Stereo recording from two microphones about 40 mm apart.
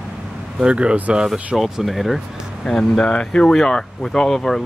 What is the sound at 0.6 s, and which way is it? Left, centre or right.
Speech, right.